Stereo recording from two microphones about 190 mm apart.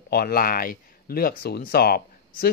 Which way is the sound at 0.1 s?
55° left (ahead or behind).